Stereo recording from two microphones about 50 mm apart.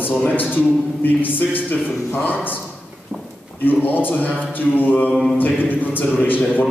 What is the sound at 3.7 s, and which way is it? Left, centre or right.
A man's voice, left.